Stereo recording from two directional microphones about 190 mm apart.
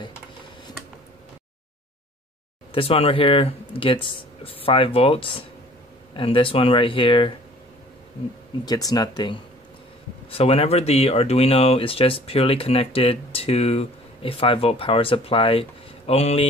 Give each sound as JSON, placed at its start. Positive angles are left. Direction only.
{"t": 2.7, "sound": "speech", "side_deg": 30}
{"t": 8.6, "sound": "speech", "side_deg": 20}